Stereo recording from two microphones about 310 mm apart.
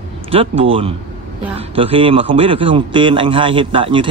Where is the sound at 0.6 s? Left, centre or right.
Centre.